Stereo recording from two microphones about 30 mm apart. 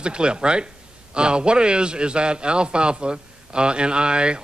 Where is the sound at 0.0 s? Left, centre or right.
Right.